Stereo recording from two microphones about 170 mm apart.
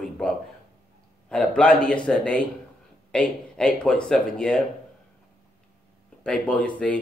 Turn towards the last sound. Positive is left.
turn(degrees=5)  # may be behind; listen again after turning